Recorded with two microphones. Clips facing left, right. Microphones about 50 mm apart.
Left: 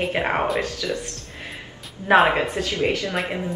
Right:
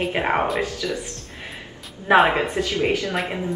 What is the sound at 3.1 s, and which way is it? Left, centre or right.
Speech, centre.